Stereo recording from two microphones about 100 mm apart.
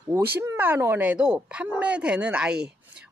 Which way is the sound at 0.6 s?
20° right (ahead or behind).